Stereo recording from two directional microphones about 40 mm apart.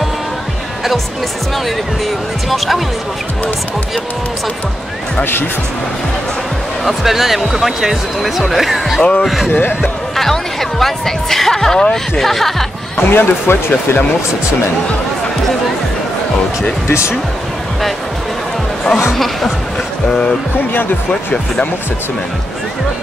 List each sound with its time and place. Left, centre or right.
2.0 s speech: centre
6.8 s speech: centre
9.5 s speech: left
9.8 s speech: centre
12.9 s speech: left
19.1 s speech: centre